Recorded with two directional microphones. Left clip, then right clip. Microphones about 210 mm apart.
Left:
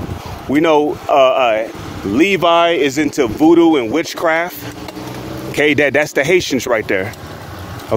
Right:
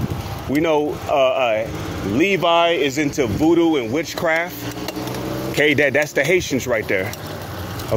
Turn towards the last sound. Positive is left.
turn(degrees=35)  # may be behind; listen again after turning